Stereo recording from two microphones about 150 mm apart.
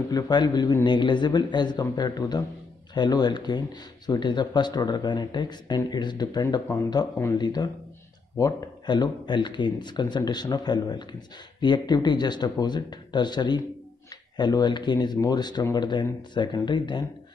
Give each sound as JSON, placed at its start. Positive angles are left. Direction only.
{"t": 0.1, "sound": "speech", "side_deg": 30}